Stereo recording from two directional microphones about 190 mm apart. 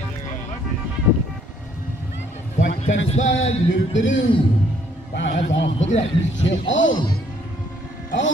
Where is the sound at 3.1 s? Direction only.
40° left (ahead or behind).